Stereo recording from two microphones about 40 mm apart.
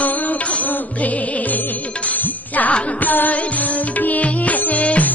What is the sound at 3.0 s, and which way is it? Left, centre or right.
Music, left.